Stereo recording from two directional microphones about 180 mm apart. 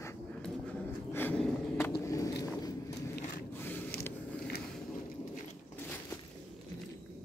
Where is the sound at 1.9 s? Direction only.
20° left (ahead or behind).